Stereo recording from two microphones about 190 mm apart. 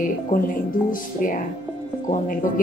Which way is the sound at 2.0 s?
45° left (ahead or behind).